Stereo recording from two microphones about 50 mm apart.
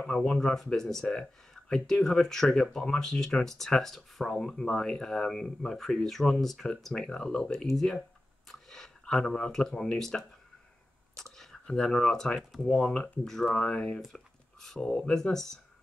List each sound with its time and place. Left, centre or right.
0.3 s speech: centre
11.6 s speech: centre